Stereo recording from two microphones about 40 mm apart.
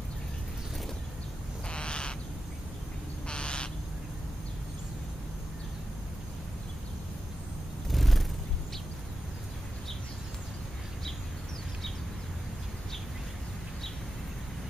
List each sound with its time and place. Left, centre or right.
1.7 s owl: left
3.3 s owl: left
7.9 s a sound: centre